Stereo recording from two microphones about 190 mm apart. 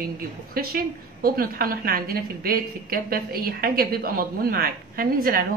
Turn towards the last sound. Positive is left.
turn(degrees=-50)  # may be behind; listen again after turning